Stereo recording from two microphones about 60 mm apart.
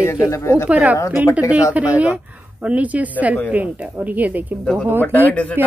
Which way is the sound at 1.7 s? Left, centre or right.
Right.